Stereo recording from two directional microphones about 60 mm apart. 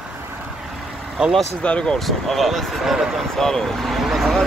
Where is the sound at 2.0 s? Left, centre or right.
Centre.